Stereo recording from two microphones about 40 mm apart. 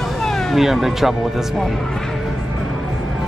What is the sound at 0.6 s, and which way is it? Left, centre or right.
Speech, centre.